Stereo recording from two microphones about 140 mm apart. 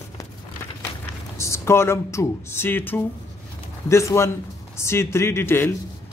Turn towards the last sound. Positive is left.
turn(degrees=15)  # may be behind; listen again after turning